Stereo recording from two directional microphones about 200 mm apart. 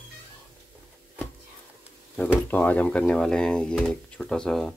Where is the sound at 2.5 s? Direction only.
10° left (ahead or behind).